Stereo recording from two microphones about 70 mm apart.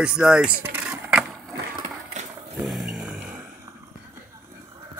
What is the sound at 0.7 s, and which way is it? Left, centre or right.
Vehicle, right.